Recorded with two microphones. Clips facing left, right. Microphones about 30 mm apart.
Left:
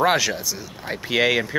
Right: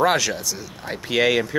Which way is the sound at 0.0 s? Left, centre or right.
Centre.